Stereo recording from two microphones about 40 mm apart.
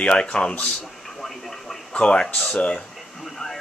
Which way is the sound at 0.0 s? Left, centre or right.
Left.